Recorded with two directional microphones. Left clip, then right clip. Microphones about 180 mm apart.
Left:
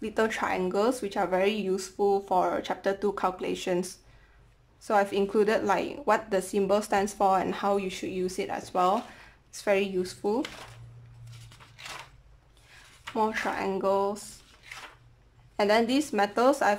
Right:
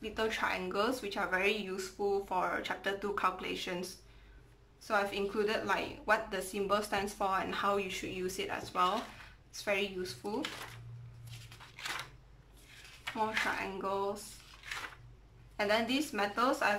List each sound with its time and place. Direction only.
0.0 s a woman's voice: 40° left (ahead or behind)
13.1 s a woman's voice: 35° left (ahead or behind)
15.5 s a woman's voice: 35° left (ahead or behind)